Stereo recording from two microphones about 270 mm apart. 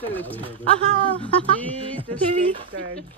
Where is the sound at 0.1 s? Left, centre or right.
Centre.